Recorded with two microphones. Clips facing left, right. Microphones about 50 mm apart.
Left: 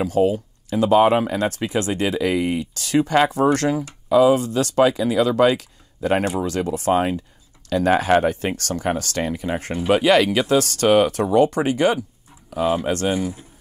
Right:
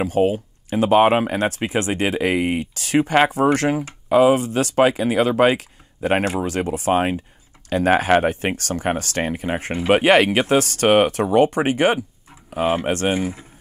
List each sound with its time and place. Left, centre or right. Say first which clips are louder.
0.0 s speech: even; right
4.7 s speech: even; right